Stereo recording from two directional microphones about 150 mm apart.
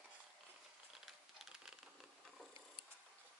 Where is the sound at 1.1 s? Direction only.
Centre (ahead or behind).